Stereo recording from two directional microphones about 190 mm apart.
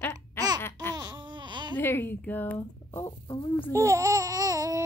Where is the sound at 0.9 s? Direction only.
20° right (ahead or behind).